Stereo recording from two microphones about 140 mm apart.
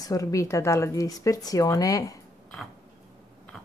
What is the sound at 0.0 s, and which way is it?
Speech, 25° left (ahead or behind).